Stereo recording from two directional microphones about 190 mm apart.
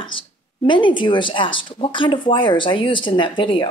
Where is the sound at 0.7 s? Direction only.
25° left (ahead or behind).